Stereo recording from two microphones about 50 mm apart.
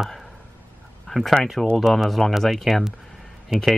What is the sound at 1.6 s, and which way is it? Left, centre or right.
Speech, centre.